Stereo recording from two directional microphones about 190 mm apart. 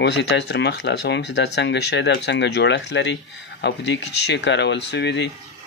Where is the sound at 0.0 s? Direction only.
65° left (ahead or behind).